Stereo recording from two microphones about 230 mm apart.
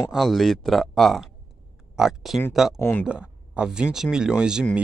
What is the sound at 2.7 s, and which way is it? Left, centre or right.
Speech, centre.